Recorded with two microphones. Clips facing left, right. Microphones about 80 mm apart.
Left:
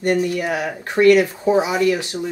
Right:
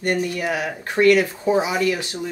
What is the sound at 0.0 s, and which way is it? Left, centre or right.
Speech, left.